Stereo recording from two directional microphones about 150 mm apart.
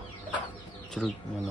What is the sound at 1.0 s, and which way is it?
Speech, centre (ahead or behind).